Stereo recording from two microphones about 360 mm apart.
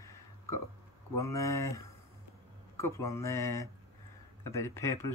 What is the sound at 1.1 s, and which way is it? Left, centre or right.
Speech, centre.